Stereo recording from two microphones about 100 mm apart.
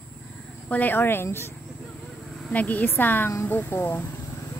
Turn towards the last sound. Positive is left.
turn(degrees=25)  # may be behind; listen again after turning